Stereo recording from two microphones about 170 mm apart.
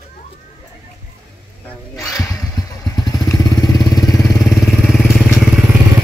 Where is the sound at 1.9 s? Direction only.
Centre (ahead or behind).